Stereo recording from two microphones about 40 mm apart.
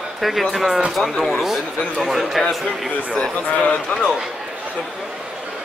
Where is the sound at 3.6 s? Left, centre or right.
Left.